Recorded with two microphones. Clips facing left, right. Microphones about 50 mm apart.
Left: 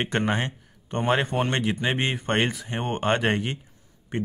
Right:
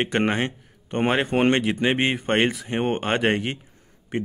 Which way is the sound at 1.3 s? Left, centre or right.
Right.